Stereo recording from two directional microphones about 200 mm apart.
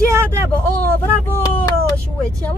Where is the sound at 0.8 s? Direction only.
10° left (ahead or behind).